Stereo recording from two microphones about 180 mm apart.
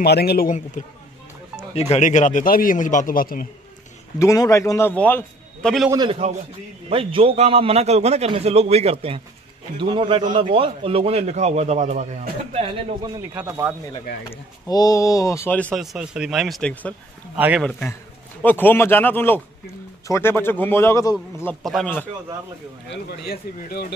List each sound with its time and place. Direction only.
0.0 s a man's voice: 60° left (ahead or behind)
1.7 s a man's voice: 35° left (ahead or behind); by 3.4 s 50° left (ahead or behind)
4.2 s speech: 15° left (ahead or behind)
5.9 s a man's voice: 25° right (ahead or behind); by 12.6 s 45° right (ahead or behind)
13.0 s speech: 20° right (ahead or behind)
14.3 s speech: 20° left (ahead or behind); by 16.9 s 5° left (ahead or behind)
17.4 s a man's voice: 10° right (ahead or behind)
17.6 s speech: 5° left (ahead or behind)
21.6 s speech: 5° left (ahead or behind)
23.0 s a man's voice: 60° left (ahead or behind)